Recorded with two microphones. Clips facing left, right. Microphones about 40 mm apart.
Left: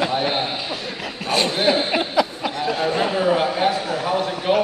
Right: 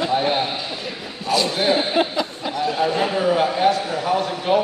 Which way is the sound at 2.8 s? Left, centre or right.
Centre.